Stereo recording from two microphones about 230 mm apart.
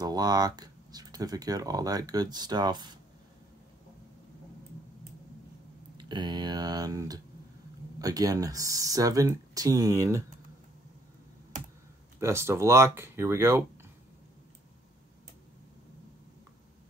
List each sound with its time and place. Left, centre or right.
0.0 s speech: centre
5.9 s speech: centre
12.2 s speech: centre